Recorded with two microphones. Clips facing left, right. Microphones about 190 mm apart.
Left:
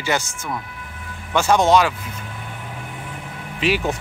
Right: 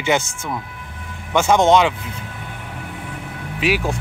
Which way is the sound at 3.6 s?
10° right (ahead or behind).